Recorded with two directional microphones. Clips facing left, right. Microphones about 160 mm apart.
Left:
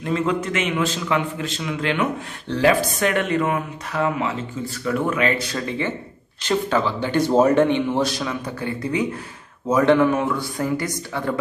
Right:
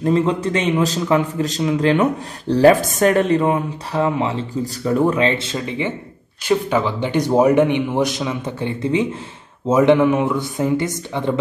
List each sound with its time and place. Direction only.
0.0 s a man's voice: 30° right (ahead or behind)